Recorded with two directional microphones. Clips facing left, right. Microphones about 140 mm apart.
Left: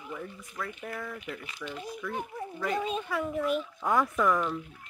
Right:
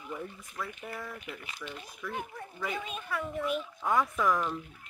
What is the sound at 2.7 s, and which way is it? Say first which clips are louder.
Speech: left 9 dB; 30° left (ahead or behind).